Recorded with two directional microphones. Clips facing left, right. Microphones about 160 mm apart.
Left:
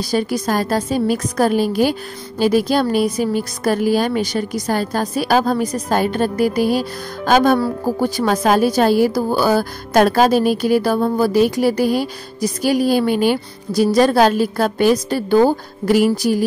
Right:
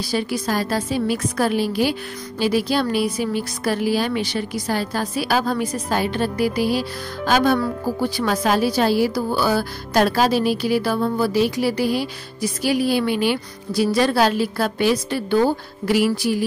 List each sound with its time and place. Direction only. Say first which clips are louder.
0.0 s a woman's voice: left 4 dB; 45° left (ahead or behind)